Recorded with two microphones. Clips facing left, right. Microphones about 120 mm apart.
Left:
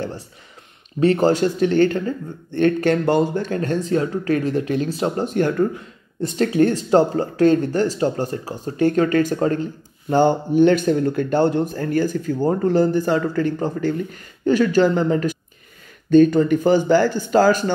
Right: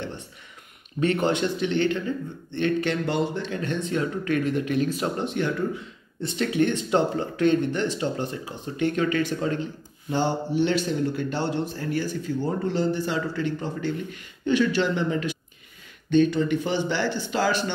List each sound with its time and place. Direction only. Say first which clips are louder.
0.9 s speech: left 7 dB; 35° left (ahead or behind)